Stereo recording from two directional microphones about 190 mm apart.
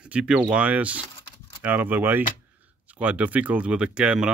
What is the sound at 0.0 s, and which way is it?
Speech, 5° right (ahead or behind).